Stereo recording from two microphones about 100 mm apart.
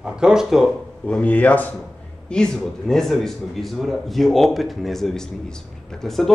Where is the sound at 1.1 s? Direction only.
10° left (ahead or behind).